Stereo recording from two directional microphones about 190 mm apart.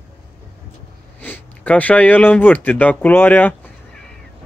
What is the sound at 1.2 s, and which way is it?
Speech, 10° left (ahead or behind).